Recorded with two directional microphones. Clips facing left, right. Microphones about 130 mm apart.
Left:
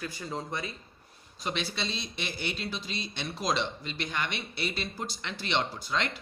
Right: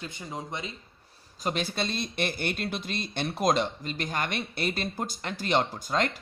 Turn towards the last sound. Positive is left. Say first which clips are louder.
# right 4 dB
turn(degrees=-45)  # may be behind; listen again after turning